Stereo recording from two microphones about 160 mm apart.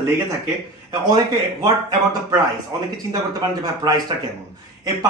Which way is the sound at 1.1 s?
25° right (ahead or behind).